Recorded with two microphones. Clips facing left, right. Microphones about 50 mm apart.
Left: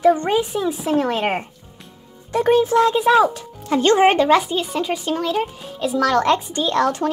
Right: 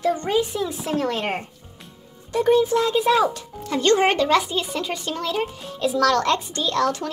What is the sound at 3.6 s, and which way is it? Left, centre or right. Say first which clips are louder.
Speech: left 4 dB; left.